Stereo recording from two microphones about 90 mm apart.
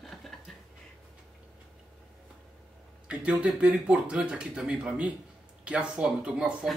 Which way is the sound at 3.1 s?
10° right (ahead or behind).